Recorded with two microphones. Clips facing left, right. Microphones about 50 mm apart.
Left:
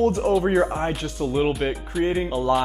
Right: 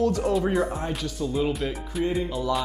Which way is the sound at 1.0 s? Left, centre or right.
Left.